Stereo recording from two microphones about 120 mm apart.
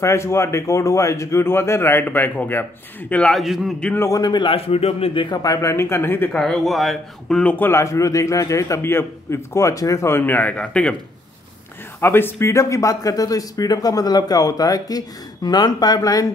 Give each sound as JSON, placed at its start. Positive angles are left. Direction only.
{"t": 0.0, "sound": "speech", "side_deg": 25}
{"t": 3.8, "sound": "speech", "side_deg": 15}
{"t": 4.1, "sound": "speech", "side_deg": 35}
{"t": 6.3, "sound": "speech", "side_deg": 5}
{"t": 12.0, "sound": "speech", "side_deg": 20}